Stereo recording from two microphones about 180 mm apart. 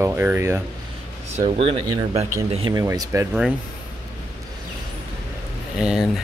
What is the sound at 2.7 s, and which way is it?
Speech, 20° right (ahead or behind).